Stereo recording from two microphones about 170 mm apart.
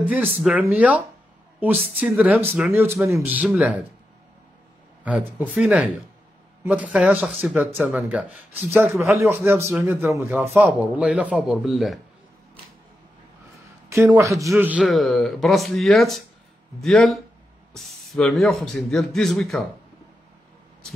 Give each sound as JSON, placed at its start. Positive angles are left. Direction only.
{"t": 0.0, "sound": "speech", "side_deg": -10}
{"t": 5.0, "sound": "speech", "side_deg": -10}
{"t": 13.8, "sound": "speech", "side_deg": -15}
{"t": 14.6, "sound": "speech", "side_deg": -5}